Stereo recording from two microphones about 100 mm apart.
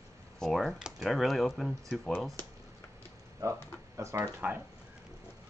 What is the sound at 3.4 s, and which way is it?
Speech, 35° right (ahead or behind).